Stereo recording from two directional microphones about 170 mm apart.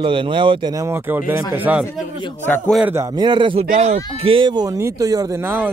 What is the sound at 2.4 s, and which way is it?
Speech, 10° left (ahead or behind).